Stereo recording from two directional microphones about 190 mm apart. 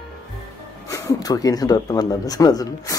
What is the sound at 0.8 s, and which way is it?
Speech, 20° left (ahead or behind).